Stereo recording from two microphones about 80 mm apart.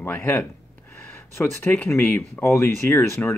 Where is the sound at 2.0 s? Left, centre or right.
Left.